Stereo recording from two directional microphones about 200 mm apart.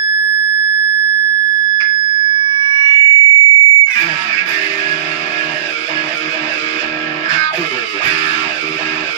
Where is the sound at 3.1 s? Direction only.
25° left (ahead or behind).